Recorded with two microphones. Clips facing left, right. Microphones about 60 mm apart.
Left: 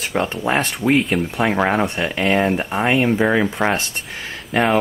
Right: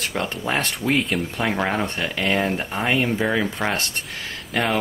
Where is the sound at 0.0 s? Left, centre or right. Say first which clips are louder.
Left 5 dB; centre.